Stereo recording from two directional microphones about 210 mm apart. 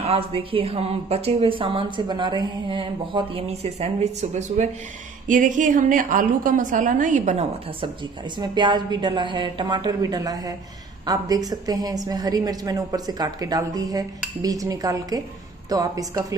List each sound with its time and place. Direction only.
0.0 s a woman's voice: 30° right (ahead or behind)
8.4 s a woman's voice: 20° right (ahead or behind)